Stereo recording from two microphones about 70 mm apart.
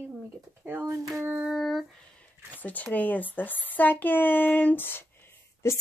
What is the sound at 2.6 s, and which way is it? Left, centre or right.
A woman's voice, left.